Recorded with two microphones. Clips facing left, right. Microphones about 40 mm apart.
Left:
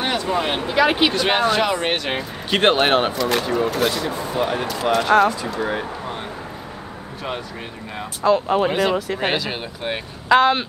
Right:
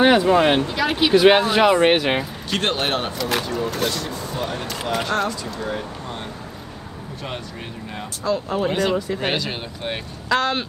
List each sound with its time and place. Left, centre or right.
0.0 s speech: centre
0.7 s a man's voice: centre
1.1 s speech: centre
2.5 s a man's voice: left
3.1 s speech: centre
4.1 s a man's voice: centre
8.2 s speech: left
8.6 s speech: centre
10.2 s speech: centre